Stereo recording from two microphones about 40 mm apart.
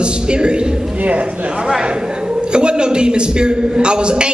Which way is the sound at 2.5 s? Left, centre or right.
Right.